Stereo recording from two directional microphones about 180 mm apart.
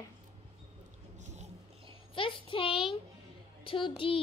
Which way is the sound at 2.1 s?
30° left (ahead or behind).